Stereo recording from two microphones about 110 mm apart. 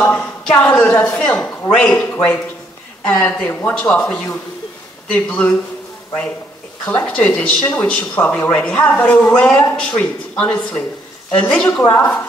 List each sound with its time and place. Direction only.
0.0 s a woman's voice: 15° left (ahead or behind)
6.9 s speech: 10° left (ahead or behind)